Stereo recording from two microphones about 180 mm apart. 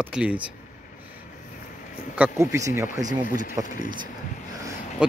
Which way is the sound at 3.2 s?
50° left (ahead or behind).